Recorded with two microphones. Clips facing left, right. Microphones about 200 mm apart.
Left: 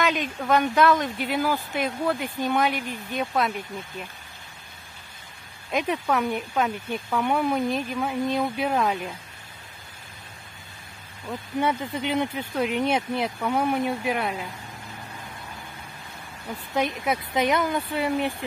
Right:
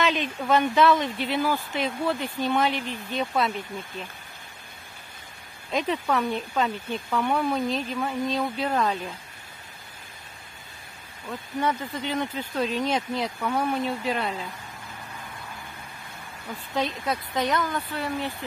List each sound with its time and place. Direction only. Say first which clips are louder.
0.1 s speech: even; 10° left (ahead or behind)
0.7 s speech: even; centre (ahead or behind)
1.0 s speech: even; 10° left (ahead or behind)
5.7 s speech: left 1 dB; 10° left (ahead or behind)
11.6 s speech: left 1 dB; 15° left (ahead or behind)
16.7 s speech: left 2 dB; 15° left (ahead or behind)